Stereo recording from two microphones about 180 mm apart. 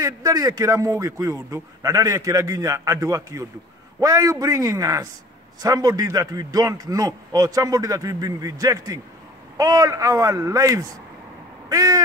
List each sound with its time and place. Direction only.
0.0 s a man's voice: 20° right (ahead or behind)